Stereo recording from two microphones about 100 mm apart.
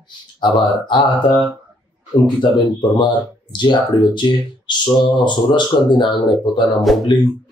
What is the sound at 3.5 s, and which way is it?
Speech, 50° left (ahead or behind).